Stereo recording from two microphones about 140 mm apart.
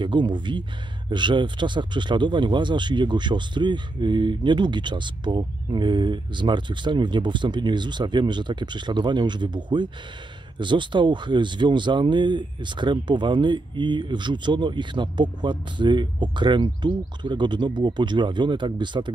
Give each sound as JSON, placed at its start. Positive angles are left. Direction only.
{"t": 0.0, "sound": "speech", "side_deg": -35}